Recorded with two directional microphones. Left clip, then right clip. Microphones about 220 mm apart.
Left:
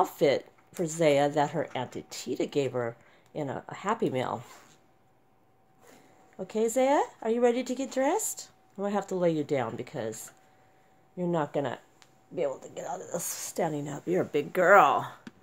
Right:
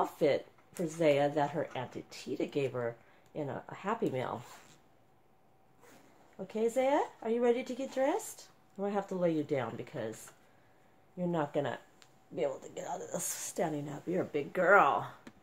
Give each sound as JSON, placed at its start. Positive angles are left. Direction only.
{"t": 0.0, "sound": "speech", "side_deg": 45}
{"t": 6.3, "sound": "speech", "side_deg": 45}
{"t": 11.1, "sound": "speech", "side_deg": 35}